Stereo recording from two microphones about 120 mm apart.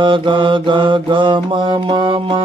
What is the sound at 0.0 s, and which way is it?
Mantra, 45° right (ahead or behind).